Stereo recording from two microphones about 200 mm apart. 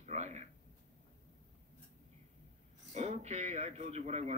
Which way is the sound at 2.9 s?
35° right (ahead or behind).